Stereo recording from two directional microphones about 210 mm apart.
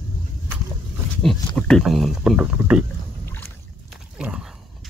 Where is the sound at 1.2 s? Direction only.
5° left (ahead or behind).